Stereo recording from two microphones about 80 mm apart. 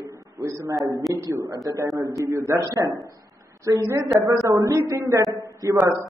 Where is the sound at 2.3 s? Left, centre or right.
Right.